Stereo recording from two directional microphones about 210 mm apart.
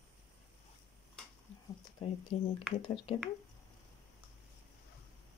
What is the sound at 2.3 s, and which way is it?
Speech, 30° left (ahead or behind).